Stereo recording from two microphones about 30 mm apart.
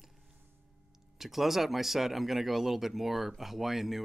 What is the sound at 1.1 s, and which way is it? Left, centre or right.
Speech, centre.